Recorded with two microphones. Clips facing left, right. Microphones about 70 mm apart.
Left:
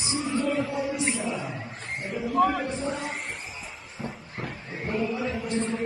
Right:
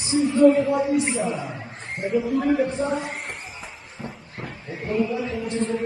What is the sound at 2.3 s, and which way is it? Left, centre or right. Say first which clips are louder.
Speech: left 1 dB; left.